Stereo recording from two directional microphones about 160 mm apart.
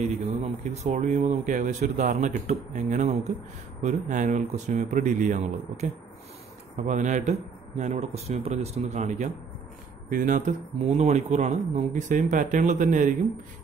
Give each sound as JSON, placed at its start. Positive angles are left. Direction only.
{"t": 0.0, "sound": "speech", "side_deg": -45}